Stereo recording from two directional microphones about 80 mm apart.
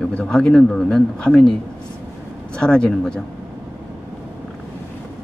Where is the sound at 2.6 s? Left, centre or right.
Centre.